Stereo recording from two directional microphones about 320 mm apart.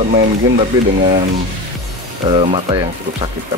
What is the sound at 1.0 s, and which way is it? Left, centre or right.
Speech, right.